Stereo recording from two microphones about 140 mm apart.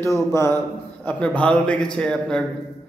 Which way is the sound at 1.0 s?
10° left (ahead or behind).